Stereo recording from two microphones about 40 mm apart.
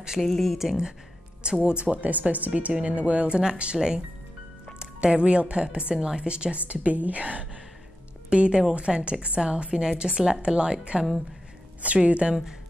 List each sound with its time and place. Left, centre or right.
0.2 s speech: centre
1.4 s speech: right
8.3 s speech: right
11.8 s speech: right